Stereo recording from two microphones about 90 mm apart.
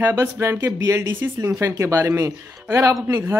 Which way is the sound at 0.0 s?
30° right (ahead or behind).